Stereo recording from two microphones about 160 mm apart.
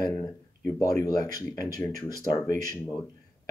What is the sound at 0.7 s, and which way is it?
Speech, 20° left (ahead or behind).